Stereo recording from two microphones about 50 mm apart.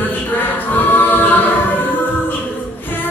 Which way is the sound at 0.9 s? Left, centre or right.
Left.